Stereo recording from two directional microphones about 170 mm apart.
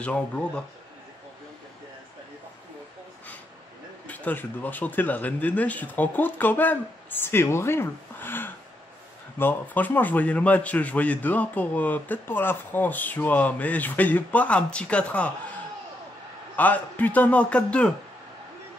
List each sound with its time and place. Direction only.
0.0 s a man's voice: 10° left (ahead or behind)
4.1 s a man's voice: 10° left (ahead or behind)
16.5 s a man's voice: 10° left (ahead or behind)